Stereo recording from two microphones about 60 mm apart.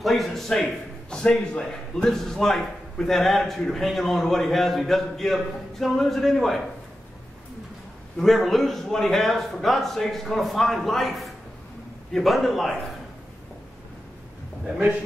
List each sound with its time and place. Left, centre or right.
0.0 s speech: centre
8.2 s speech: centre